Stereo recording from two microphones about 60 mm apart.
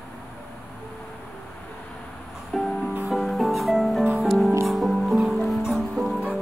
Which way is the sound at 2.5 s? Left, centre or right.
Centre.